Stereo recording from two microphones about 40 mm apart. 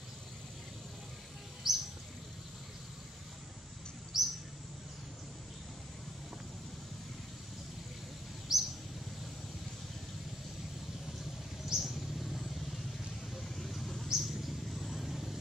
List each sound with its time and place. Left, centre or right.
1.6 s bird: centre
4.1 s mouse: centre
8.5 s a sound: centre
11.6 s vehicle: centre